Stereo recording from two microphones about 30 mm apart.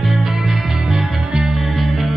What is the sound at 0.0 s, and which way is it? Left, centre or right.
Music, centre.